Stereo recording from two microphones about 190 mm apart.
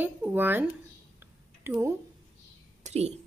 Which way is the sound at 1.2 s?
10° right (ahead or behind).